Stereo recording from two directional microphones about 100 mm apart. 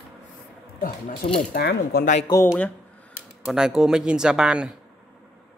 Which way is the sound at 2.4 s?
20° left (ahead or behind).